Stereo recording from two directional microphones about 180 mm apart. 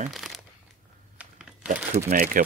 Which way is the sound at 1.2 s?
5° right (ahead or behind).